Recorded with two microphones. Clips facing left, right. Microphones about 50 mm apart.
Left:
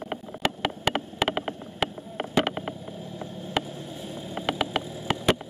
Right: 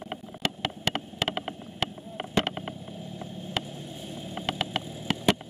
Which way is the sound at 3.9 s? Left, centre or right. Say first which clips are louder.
Left 3 dB; left.